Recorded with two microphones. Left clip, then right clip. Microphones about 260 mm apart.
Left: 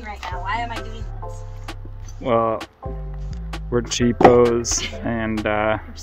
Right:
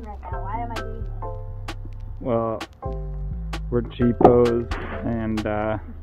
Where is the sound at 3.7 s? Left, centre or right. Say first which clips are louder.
Left 3 dB; left.